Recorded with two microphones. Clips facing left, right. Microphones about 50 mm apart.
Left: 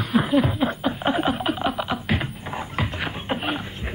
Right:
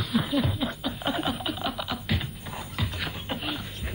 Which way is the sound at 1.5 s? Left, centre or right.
Left.